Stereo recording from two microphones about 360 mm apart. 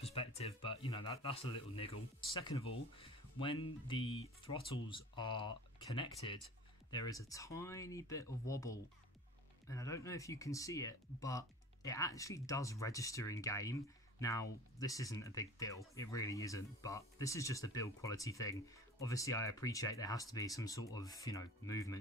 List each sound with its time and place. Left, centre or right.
0.0 s speech: centre